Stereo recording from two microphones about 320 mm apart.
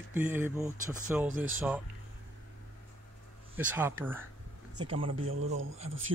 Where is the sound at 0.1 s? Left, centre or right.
Centre.